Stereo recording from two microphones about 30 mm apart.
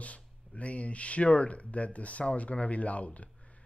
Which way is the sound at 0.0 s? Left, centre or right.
Left.